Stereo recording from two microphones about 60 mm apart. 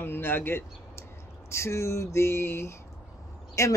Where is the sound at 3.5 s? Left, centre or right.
Left.